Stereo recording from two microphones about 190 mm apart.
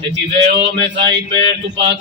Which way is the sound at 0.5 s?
65° right (ahead or behind).